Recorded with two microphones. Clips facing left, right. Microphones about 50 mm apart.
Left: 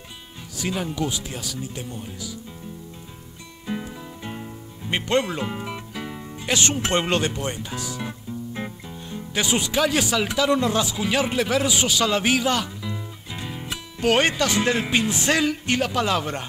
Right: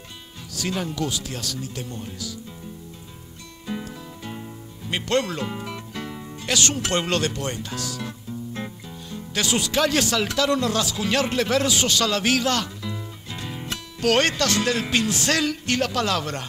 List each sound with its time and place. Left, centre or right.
0.6 s speech: centre
3.6 s music: centre
9.8 s speech: centre